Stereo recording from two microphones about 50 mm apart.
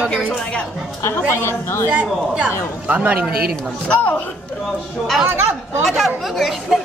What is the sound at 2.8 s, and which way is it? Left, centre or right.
Speech, right.